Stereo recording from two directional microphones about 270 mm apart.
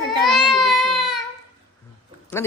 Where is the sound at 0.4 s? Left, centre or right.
Centre.